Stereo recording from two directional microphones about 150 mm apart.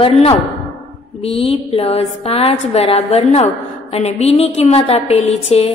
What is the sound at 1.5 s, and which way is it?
A woman's voice, 45° left (ahead or behind).